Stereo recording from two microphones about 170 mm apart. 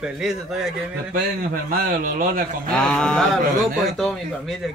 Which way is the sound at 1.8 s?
60° right (ahead or behind).